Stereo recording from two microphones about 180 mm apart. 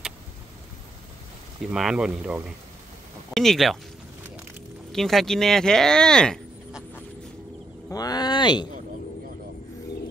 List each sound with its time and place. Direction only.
1.7 s speech: 5° right (ahead or behind)
4.9 s speech: centre (ahead or behind)
7.9 s speech: 20° left (ahead or behind)